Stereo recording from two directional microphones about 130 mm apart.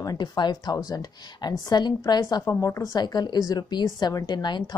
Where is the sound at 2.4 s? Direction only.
20° left (ahead or behind).